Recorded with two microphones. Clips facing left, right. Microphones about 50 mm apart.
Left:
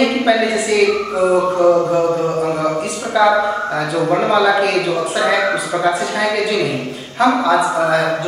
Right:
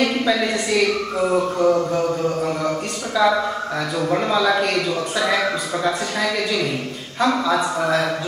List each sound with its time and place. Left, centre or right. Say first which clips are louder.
0.0 s a man's voice: left 5 dB; centre
2.0 s a sound: left 4 dB; centre
3.2 s a man's voice: left 5 dB; centre